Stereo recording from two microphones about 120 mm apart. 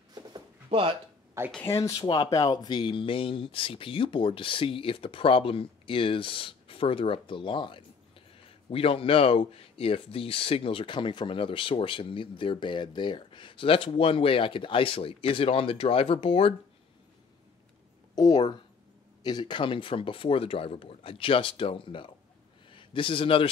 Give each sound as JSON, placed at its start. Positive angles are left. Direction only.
{"t": 0.1, "sound": "a sound", "side_deg": -40}
{"t": 1.6, "sound": "speech", "side_deg": 25}
{"t": 18.1, "sound": "speech", "side_deg": 35}